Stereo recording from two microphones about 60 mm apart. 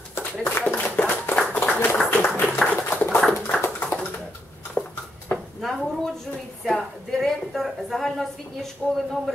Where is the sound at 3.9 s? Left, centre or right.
Left.